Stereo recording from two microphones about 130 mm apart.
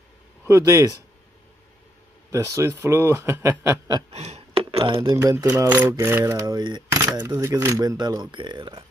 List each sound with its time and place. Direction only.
0.5 s speech: 20° right (ahead or behind)
2.3 s speech: 20° right (ahead or behind)
4.1 s a sound: 55° right (ahead or behind)
5.1 s speech: 25° right (ahead or behind)
6.4 s coin: 35° right (ahead or behind)
6.9 s speech: 20° right (ahead or behind); by 8.8 s 35° right (ahead or behind)